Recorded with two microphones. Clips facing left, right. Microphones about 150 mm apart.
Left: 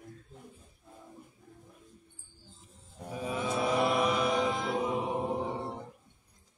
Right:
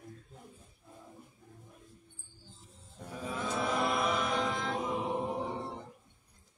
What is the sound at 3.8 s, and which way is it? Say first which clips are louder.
Music: left 4 dB; 5° left (ahead or behind).